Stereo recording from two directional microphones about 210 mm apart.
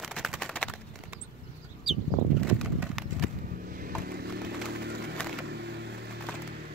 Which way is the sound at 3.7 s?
45° right (ahead or behind).